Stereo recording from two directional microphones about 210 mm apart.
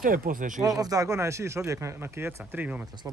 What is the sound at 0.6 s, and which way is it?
A man's voice, 15° right (ahead or behind).